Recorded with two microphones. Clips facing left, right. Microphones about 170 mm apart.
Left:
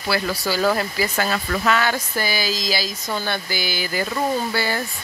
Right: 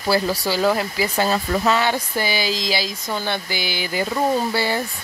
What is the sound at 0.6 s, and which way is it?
Speech, 15° right (ahead or behind).